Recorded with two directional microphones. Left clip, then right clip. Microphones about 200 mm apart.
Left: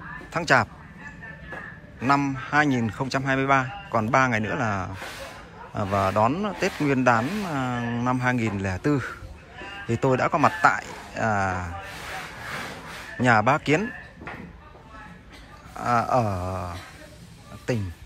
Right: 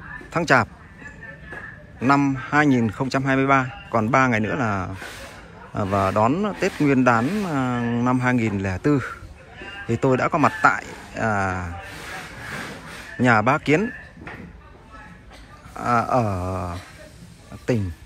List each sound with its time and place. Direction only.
0.3 s speech: 10° left (ahead or behind)
2.0 s a man's voice: 10° left (ahead or behind)
13.2 s a man's voice: 10° left (ahead or behind)
15.7 s a man's voice: 10° left (ahead or behind)